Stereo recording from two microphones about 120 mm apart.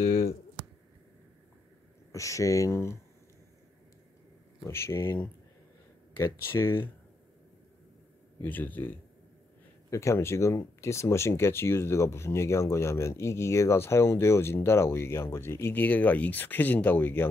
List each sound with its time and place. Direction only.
0.0 s a sound: 65° left (ahead or behind)
2.1 s speech: 25° left (ahead or behind)
4.6 s speech: 20° left (ahead or behind)
6.1 s speech: 20° left (ahead or behind)
8.4 s speech: 15° left (ahead or behind)